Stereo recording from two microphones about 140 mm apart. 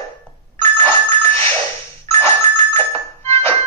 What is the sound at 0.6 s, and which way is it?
Doorbell, 20° left (ahead or behind).